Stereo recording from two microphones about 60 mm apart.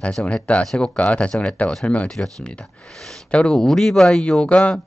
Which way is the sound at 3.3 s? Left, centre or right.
Centre.